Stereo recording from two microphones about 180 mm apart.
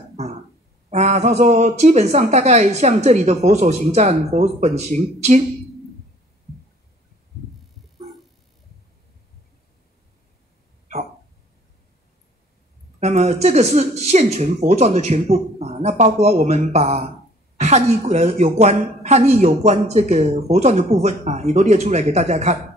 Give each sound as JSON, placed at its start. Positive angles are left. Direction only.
{"t": 0.1, "sound": "a sound", "side_deg": -40}
{"t": 0.8, "sound": "a woman's voice", "side_deg": -40}
{"t": 13.0, "sound": "a woman's voice", "side_deg": -40}